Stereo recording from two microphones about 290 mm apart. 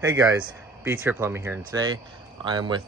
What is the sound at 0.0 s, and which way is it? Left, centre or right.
Speech, centre.